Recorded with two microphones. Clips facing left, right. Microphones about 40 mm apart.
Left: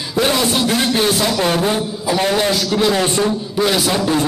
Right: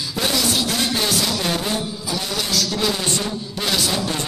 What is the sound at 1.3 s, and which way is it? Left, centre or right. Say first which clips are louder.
Speech: left 7 dB; left.